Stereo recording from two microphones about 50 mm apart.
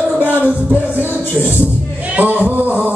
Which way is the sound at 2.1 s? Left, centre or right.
Right.